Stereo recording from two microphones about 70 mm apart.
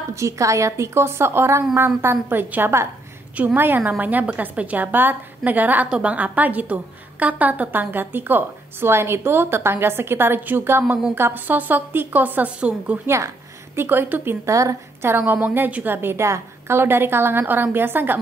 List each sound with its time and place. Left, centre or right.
0.1 s a woman's voice: right; by 13.0 s centre
13.0 s a woman's voice: right
13.7 s a woman's voice: right
14.4 s a woman's voice: right
15.0 s a woman's voice: right